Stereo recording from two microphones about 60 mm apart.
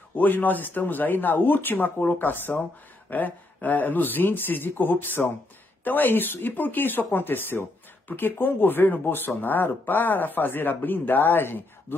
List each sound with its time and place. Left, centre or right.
0.1 s speech: left